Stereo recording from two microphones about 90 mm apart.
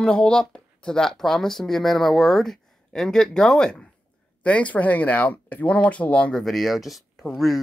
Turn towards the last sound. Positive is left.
turn(degrees=0)  # may be behind; listen again after turning